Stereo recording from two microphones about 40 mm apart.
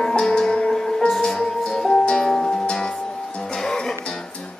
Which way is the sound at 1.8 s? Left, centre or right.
Centre.